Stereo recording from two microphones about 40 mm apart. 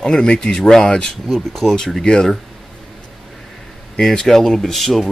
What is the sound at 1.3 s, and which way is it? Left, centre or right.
Speech, centre.